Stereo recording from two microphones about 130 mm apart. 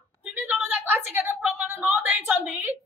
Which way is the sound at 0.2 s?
15° right (ahead or behind).